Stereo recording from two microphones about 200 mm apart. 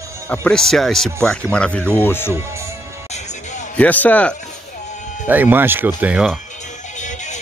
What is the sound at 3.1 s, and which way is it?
Music, 35° left (ahead or behind).